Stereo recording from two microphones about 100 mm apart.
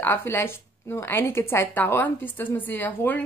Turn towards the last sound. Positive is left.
turn(degrees=20)  # may be behind; listen again after turning